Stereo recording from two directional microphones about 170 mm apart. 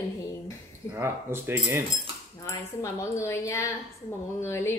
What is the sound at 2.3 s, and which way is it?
A woman's voice, 15° left (ahead or behind).